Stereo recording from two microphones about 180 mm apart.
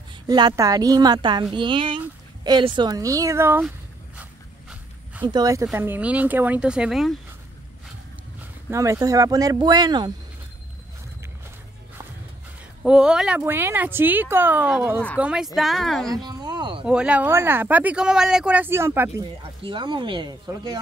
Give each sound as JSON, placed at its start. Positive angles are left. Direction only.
{"t": 0.3, "sound": "speech", "side_deg": -20}
{"t": 4.2, "sound": "a sound", "side_deg": -10}
{"t": 5.2, "sound": "speech", "side_deg": -20}
{"t": 8.6, "sound": "speech", "side_deg": -15}
{"t": 12.8, "sound": "a woman's voice", "side_deg": -5}
{"t": 16.3, "sound": "a sound", "side_deg": -25}
{"t": 16.8, "sound": "speech", "side_deg": -5}
{"t": 19.6, "sound": "speech", "side_deg": -25}